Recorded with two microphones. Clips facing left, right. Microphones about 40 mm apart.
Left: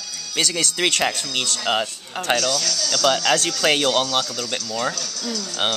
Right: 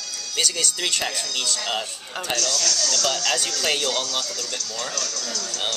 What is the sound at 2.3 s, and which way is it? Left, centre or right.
Speech, centre.